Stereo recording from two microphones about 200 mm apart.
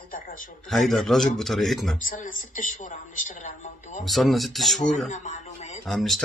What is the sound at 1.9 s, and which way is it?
A woman's voice, 40° left (ahead or behind).